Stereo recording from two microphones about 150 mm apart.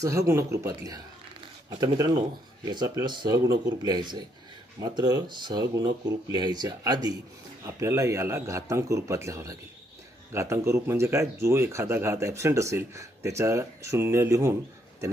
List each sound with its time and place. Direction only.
0.0 s speech: 20° right (ahead or behind)